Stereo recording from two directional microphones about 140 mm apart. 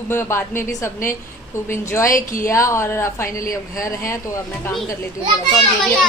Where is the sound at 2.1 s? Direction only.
75° left (ahead or behind).